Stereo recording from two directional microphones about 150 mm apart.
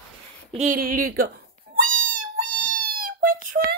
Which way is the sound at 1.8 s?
65° right (ahead or behind).